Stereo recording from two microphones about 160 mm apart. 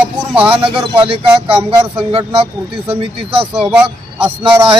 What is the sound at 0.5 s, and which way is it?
A man's voice, 35° right (ahead or behind).